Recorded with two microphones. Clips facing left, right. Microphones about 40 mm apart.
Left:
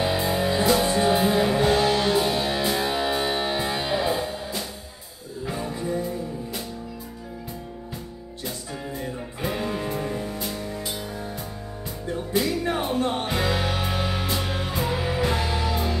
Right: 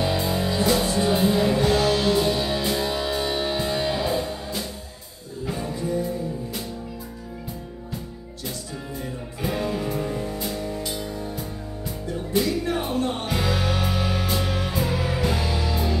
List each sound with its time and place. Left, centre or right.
0.0 s music: centre
8.9 s music: centre
12.3 s music: centre
12.6 s music: centre